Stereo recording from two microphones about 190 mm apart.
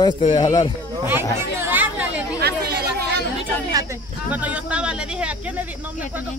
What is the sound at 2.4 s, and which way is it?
Speech, 60° right (ahead or behind).